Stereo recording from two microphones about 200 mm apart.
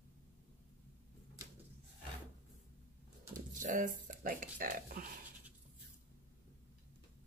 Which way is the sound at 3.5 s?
40° right (ahead or behind).